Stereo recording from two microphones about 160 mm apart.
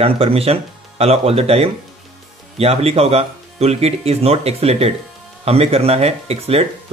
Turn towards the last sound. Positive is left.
turn(degrees=-40)  # may be behind; listen again after turning